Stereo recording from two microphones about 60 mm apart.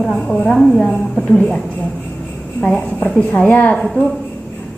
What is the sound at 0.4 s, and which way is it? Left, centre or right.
Speech, centre.